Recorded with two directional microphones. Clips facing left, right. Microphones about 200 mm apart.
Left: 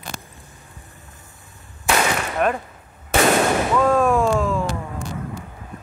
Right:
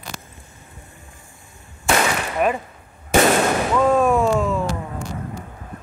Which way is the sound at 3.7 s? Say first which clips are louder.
Right 2 dB; 5° right (ahead or behind).